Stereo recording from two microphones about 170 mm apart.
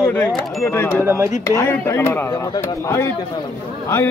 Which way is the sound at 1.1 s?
15° right (ahead or behind).